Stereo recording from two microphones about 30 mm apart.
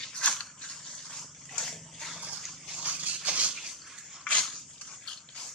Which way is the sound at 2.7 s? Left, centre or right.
Right.